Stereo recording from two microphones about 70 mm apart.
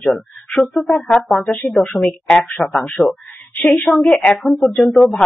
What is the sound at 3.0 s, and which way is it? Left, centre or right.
Speech, centre.